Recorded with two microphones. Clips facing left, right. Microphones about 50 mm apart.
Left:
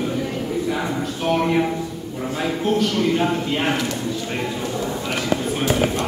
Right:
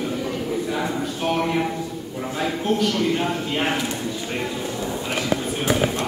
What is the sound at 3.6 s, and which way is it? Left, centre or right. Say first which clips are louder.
Speech: left 2 dB; centre.